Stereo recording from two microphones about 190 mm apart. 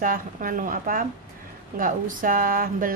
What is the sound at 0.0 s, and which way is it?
A woman's voice, 45° right (ahead or behind).